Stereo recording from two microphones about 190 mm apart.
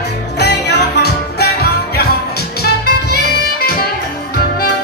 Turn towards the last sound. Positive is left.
turn(degrees=50)  # may be behind; listen again after turning